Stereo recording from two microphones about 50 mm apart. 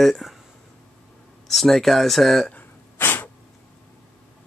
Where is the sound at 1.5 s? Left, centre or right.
Centre.